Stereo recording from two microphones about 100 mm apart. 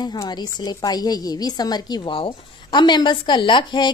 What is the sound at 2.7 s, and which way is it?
Speech, 50° left (ahead or behind).